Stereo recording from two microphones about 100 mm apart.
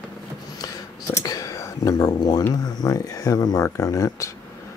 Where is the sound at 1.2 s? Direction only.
35° left (ahead or behind).